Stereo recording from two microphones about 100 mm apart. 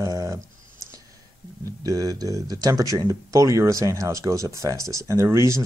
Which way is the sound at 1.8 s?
35° right (ahead or behind).